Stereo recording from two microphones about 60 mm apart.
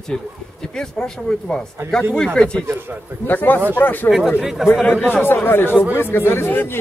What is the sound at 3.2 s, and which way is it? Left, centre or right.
Speech, left.